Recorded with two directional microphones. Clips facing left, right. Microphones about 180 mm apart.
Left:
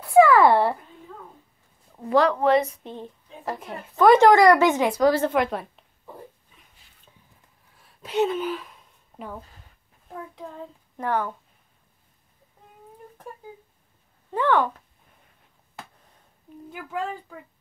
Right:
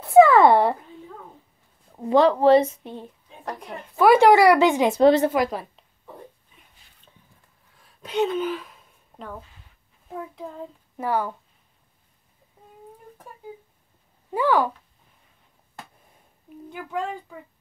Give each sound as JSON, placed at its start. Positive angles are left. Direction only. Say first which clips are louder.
{"t": 0.0, "sound": "a sound", "louder": "right 2 dB", "side_deg": -25}
{"t": 2.0, "sound": "a woman's voice", "louder": "right 3 dB", "side_deg": -25}
{"t": 2.8, "sound": "speech", "louder": "even", "side_deg": -15}
{"t": 3.4, "sound": "speech", "louder": "left 1 dB", "side_deg": 0}
{"t": 4.8, "sound": "a woman's voice", "louder": "right 4 dB", "side_deg": -25}
{"t": 5.3, "sound": "speech", "louder": "even", "side_deg": 0}
{"t": 8.0, "sound": "speech", "louder": "even", "side_deg": 0}
{"t": 11.0, "sound": "speech", "louder": "right 1 dB", "side_deg": -10}
{"t": 14.3, "sound": "speech", "louder": "right 1 dB", "side_deg": -10}
{"t": 16.6, "sound": "speech", "louder": "right 2 dB", "side_deg": 5}